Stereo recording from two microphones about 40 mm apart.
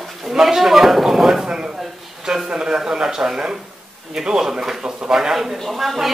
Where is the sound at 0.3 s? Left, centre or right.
Centre.